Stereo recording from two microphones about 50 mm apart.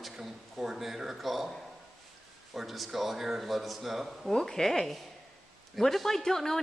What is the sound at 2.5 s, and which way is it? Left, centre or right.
A man's voice, centre.